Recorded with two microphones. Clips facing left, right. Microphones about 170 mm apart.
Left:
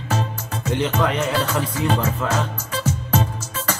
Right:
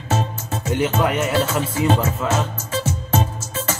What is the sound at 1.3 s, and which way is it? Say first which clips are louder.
Music: right 2 dB; 25° right (ahead or behind).